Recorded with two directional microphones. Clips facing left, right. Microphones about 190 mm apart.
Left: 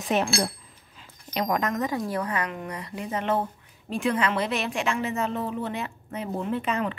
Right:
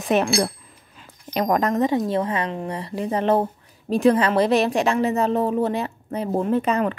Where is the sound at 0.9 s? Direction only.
45° right (ahead or behind).